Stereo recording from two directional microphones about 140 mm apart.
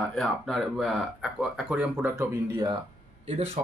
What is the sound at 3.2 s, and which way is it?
Speech, 50° right (ahead or behind).